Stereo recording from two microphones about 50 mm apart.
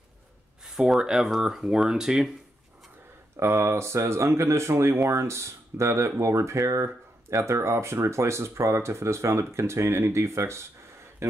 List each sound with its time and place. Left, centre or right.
0.7 s speech: centre
3.3 s speech: right